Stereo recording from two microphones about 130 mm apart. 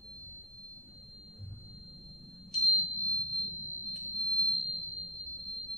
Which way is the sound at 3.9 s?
5° right (ahead or behind).